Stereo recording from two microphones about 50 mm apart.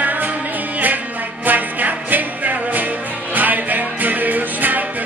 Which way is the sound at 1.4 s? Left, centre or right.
Right.